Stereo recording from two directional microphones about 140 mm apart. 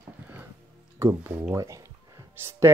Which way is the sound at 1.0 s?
20° right (ahead or behind).